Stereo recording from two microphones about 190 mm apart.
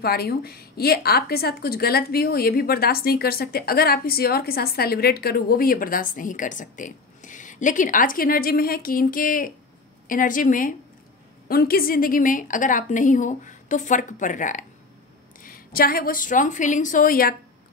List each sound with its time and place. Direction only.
0.0 s a woman's voice: 55° left (ahead or behind)